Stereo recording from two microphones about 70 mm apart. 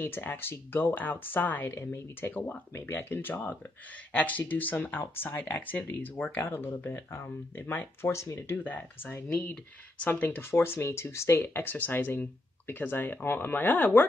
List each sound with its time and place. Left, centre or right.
0.0 s speech: left
1.8 s speech: left
8.1 s speech: left
8.6 s speech: left